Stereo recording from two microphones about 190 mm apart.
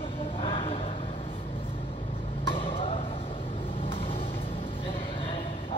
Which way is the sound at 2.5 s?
30° left (ahead or behind).